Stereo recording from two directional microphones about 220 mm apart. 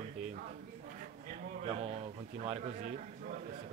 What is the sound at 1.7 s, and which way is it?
Speech, 25° right (ahead or behind).